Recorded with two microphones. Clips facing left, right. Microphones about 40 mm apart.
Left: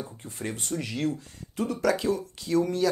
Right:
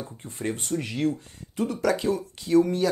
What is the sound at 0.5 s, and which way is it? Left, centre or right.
Speech, right.